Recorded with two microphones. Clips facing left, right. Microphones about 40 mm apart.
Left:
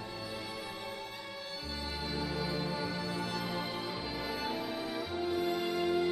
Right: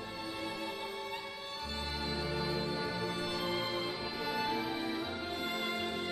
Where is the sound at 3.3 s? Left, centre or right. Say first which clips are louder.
Right 1 dB; right.